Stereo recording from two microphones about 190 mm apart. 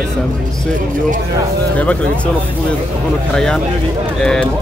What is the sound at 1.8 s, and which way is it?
Speech, 5° left (ahead or behind).